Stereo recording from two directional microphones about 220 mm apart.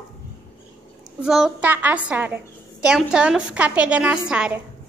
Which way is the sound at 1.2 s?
Centre (ahead or behind).